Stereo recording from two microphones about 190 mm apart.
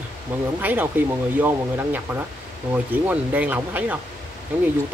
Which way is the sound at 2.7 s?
10° right (ahead or behind).